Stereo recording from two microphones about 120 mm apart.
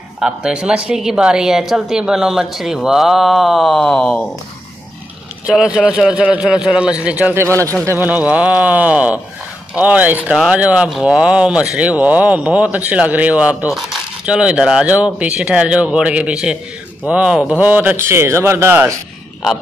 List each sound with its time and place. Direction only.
0.2 s a woman's voice: 5° right (ahead or behind)
5.5 s speech: 5° right (ahead or behind)
7.4 s speech: 25° right (ahead or behind)
8.1 s speech: 10° right (ahead or behind)